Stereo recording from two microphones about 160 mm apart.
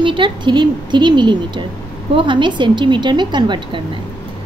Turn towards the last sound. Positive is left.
turn(degrees=-30)  # may be behind; listen again after turning